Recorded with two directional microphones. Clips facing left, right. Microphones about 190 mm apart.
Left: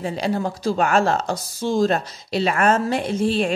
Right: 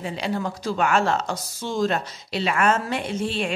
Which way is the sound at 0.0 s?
40° left (ahead or behind).